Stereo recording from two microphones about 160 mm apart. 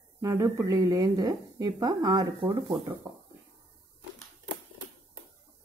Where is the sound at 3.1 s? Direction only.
20° right (ahead or behind).